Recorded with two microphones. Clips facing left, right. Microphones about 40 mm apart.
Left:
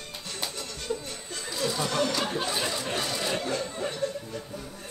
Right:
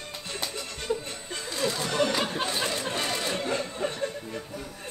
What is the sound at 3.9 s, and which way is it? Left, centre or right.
Music, right.